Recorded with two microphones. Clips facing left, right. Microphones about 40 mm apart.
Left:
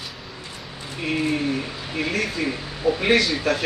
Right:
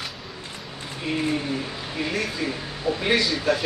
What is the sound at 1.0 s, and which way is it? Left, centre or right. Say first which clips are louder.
Speech: left 2 dB; left.